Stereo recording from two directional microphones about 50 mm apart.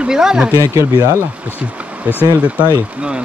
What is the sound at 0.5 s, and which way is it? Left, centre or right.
Speech, right.